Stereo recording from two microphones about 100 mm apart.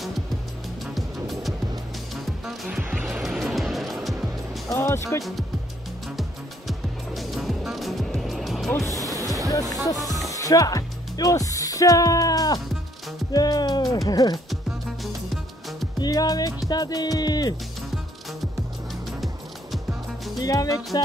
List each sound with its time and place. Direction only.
0.9 s music: centre (ahead or behind)
2.8 s music: 20° right (ahead or behind)
3.1 s music: 5° right (ahead or behind)
4.7 s music: 30° left (ahead or behind)
6.7 s music: centre (ahead or behind)
8.8 s music: 35° right (ahead or behind)
9.5 s speech: 35° left (ahead or behind)
13.3 s music: 40° left (ahead or behind)
14.0 s speech: 45° left (ahead or behind)
16.0 s music: 40° left (ahead or behind)
19.0 s music: centre (ahead or behind)
20.3 s music: 40° left (ahead or behind)